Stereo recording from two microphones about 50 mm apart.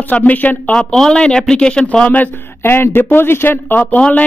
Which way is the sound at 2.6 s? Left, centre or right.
Left.